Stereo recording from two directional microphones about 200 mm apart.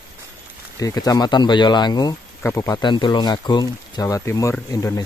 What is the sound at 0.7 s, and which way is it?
Speech, 15° left (ahead or behind).